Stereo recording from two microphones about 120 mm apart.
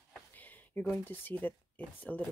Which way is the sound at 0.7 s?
15° left (ahead or behind).